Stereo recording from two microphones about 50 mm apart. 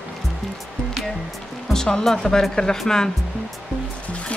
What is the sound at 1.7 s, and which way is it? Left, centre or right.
Speech, centre.